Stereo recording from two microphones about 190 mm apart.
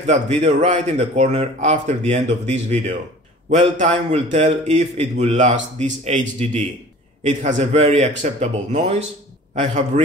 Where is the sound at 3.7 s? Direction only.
40° right (ahead or behind).